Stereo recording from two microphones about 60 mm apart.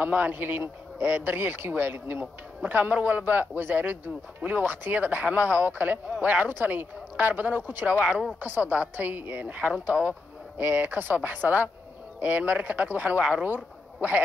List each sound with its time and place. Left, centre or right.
0.0 s a man's voice: right
8.0 s speech: centre
8.4 s a man's voice: right